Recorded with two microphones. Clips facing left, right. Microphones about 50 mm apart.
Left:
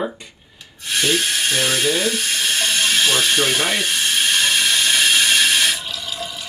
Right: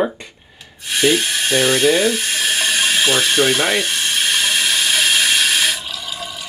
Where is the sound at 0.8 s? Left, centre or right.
Centre.